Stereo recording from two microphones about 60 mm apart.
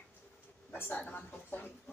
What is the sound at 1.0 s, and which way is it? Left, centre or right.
Speech, left.